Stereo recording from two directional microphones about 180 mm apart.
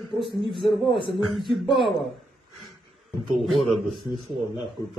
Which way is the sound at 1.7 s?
30° left (ahead or behind).